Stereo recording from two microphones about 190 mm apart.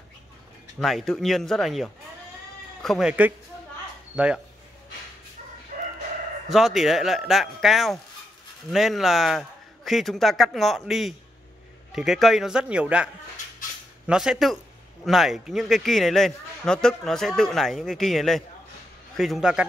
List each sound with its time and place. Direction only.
0.7 s a man's voice: centre (ahead or behind)
5.7 s crowing: 40° right (ahead or behind)
6.5 s a man's voice: centre (ahead or behind)